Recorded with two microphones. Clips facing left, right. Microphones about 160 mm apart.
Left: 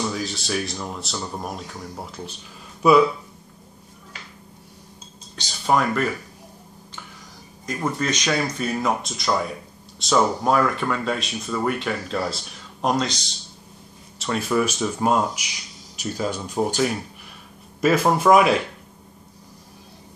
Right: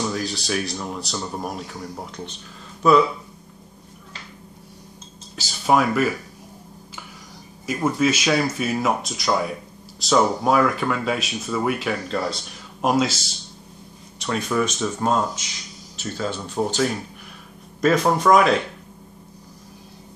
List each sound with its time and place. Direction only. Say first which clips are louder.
0.0 s speech: right 1 dB; centre (ahead or behind)
5.3 s speech: right 2 dB; 5° right (ahead or behind)
7.6 s speech: right 4 dB; 5° right (ahead or behind)